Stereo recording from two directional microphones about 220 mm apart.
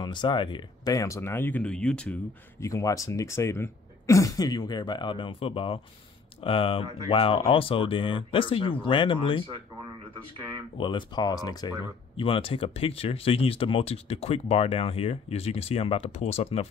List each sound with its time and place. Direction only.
0.0 s speech: 20° left (ahead or behind)
10.8 s speech: 20° left (ahead or behind)